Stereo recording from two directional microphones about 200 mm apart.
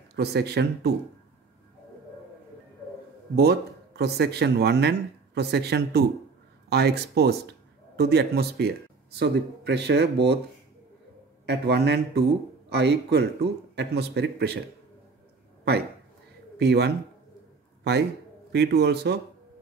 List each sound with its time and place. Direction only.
0.1 s a man's voice: 55° right (ahead or behind)
3.3 s a man's voice: 55° right (ahead or behind)
11.4 s a man's voice: 55° right (ahead or behind)
16.5 s speech: 55° right (ahead or behind)
18.5 s a man's voice: 55° right (ahead or behind)